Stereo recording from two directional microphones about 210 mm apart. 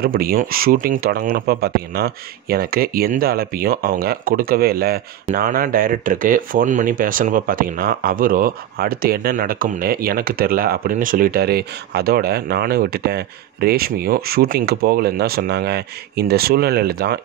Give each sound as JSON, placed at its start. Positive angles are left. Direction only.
{"t": 0.0, "sound": "speech", "side_deg": -45}